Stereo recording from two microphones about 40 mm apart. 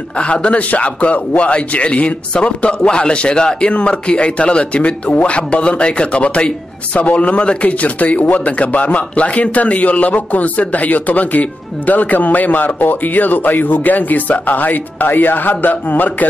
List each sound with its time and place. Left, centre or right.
0.2 s a man's voice: left